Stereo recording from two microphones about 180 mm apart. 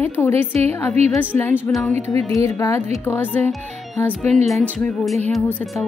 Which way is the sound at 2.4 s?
15° left (ahead or behind).